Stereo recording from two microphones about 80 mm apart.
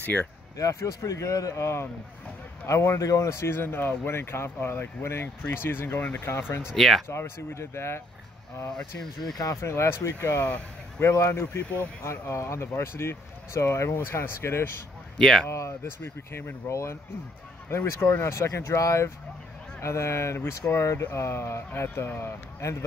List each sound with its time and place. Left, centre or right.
0.0 s speech: left
0.6 s speech: left
6.7 s speech: centre
7.1 s speech: left
8.6 s speech: centre
9.4 s speech: left
15.1 s speech: centre
15.4 s speech: left